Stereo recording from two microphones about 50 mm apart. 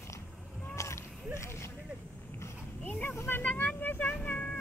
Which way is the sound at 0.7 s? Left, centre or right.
Left.